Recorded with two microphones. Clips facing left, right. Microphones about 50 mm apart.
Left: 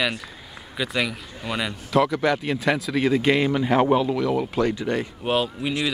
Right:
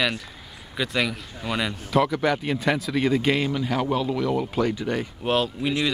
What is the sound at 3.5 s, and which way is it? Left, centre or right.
Speech, left.